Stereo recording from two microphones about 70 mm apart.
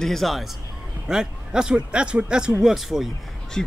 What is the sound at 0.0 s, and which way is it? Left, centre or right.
Speech, centre.